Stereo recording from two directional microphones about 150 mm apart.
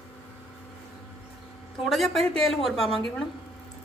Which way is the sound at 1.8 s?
Centre (ahead or behind).